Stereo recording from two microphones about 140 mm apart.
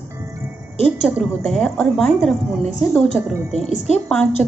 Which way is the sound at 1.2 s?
5° left (ahead or behind).